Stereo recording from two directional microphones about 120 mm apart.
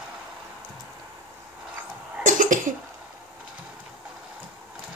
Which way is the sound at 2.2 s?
90° right.